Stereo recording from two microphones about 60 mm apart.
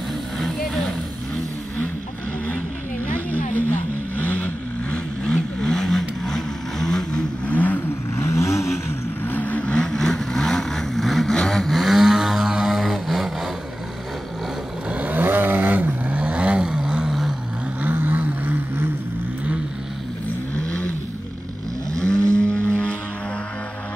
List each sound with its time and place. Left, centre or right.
4.2 s vehicle: left
4.9 s vehicle: centre
7.5 s vehicle: left
8.2 s vehicle: left
9.2 s vehicle: left; by 13.3 s centre
14.9 s vehicle: right; by 17.4 s centre
17.8 s vehicle: right
21.9 s vehicle: centre